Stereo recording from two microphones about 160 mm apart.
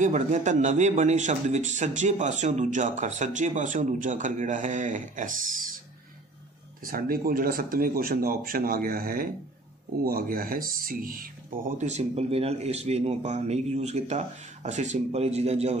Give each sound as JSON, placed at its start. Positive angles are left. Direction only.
{"t": 0.0, "sound": "speech", "side_deg": -50}
{"t": 6.9, "sound": "speech", "side_deg": -65}